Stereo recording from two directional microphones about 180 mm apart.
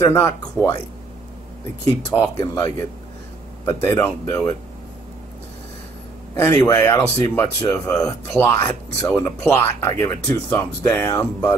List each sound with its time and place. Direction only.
0.0 s speech: 15° left (ahead or behind)
2.0 s speech: 20° left (ahead or behind)
6.6 s speech: 20° left (ahead or behind)